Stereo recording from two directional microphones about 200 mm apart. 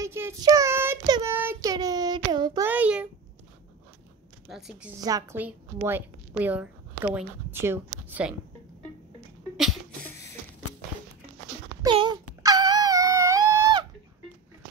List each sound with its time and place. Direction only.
0.0 s child singing: 15° right (ahead or behind)
2.7 s a sound: 5° right (ahead or behind)
4.5 s a woman's voice: centre (ahead or behind)
5.0 s a woman's voice: 15° right (ahead or behind)
9.6 s a sound: centre (ahead or behind)
11.8 s wail: 25° right (ahead or behind)